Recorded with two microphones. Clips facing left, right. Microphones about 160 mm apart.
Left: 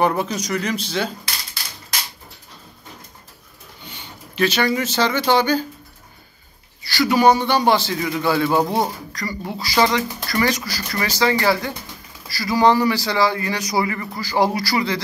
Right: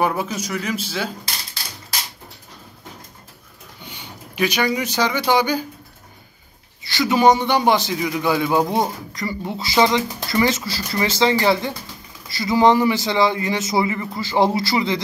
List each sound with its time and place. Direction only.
0.0 s speech: 5° right (ahead or behind)
4.4 s a man's voice: 15° right (ahead or behind)
6.8 s a man's voice: 20° right (ahead or behind)